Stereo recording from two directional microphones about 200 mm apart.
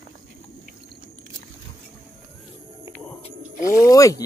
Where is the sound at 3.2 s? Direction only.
40° left (ahead or behind).